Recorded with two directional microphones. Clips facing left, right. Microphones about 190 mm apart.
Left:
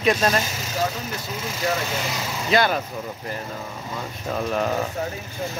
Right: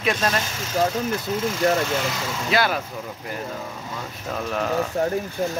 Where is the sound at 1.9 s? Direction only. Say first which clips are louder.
Right 3 dB; 5° left (ahead or behind).